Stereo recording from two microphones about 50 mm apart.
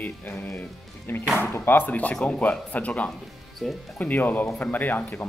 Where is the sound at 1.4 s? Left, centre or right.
Left.